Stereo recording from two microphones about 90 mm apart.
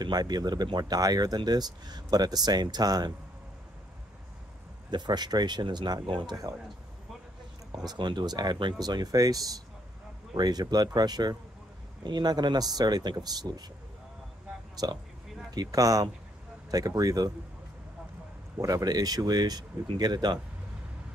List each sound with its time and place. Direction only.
0.0 s speech: 50° right (ahead or behind)
4.9 s speech: 55° right (ahead or behind)
7.7 s speech: 50° right (ahead or behind)
14.8 s speech: 50° right (ahead or behind)
18.6 s speech: 40° right (ahead or behind)